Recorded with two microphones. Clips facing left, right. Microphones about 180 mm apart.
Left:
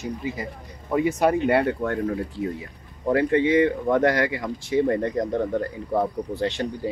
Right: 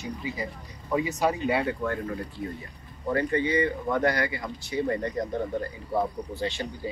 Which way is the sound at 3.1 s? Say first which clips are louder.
Left 6 dB; 90° left.